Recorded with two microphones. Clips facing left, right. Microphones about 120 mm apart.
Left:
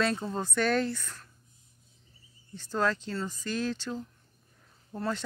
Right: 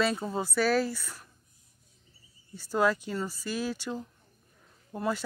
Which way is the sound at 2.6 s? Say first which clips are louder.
Right 3 dB; 10° right (ahead or behind).